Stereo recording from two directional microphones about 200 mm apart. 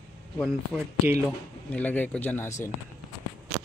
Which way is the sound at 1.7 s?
10° left (ahead or behind).